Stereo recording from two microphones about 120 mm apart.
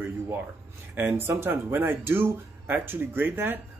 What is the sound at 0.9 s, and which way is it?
Speech, 15° right (ahead or behind).